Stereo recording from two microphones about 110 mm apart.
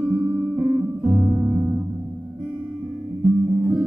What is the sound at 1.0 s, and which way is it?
Music, centre (ahead or behind).